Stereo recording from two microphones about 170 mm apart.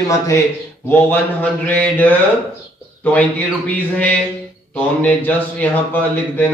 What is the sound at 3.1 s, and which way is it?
A man's voice, 10° left (ahead or behind).